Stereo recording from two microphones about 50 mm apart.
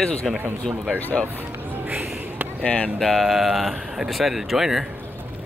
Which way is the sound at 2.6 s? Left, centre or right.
Left.